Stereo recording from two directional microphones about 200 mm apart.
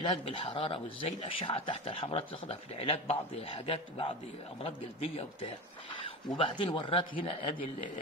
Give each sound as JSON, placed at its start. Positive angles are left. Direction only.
{"t": 0.0, "sound": "speech", "side_deg": 25}